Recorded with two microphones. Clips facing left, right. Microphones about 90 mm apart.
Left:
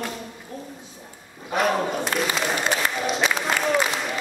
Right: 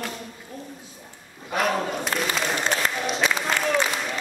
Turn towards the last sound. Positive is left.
turn(degrees=0)  # may be behind; listen again after turning